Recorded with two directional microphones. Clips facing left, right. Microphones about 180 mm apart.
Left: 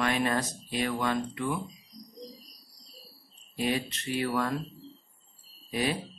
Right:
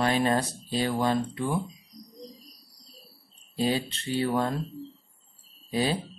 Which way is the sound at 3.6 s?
30° right (ahead or behind).